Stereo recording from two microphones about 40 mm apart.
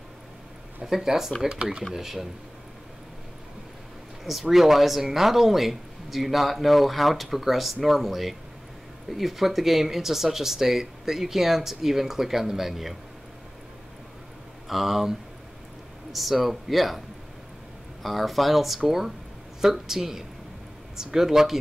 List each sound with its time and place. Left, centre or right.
0.8 s speech: centre
2.0 s speech: centre
4.2 s speech: centre
14.7 s speech: centre
18.0 s speech: centre